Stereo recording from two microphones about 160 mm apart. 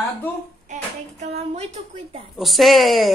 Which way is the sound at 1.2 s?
45° right (ahead or behind).